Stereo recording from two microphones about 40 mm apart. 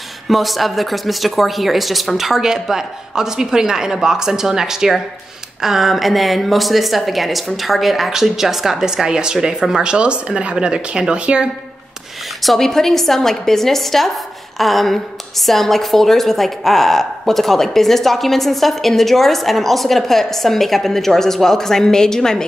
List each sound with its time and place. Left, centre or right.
0.3 s a woman's voice: centre; by 11.4 s right
12.4 s a woman's voice: centre